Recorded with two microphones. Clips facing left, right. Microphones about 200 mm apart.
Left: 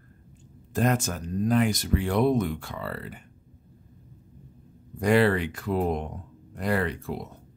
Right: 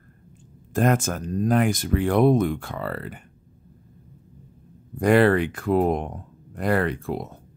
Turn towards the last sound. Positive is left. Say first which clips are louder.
# right 4 dB
turn(degrees=-55)  # may be behind; listen again after turning